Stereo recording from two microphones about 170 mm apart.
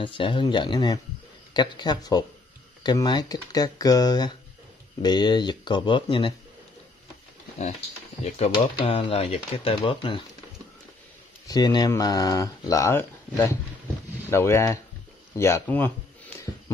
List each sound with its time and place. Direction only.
0.0 s speech: 30° left (ahead or behind)
8.2 s speech: 40° left (ahead or behind)
11.4 s speech: 25° left (ahead or behind)